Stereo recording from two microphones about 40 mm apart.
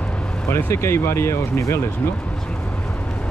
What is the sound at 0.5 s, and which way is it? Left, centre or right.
Speech, left.